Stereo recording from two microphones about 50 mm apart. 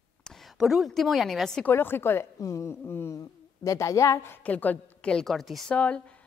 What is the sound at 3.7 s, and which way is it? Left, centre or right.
Speech, left.